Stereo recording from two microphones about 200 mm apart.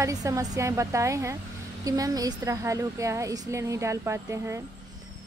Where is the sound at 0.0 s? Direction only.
15° right (ahead or behind).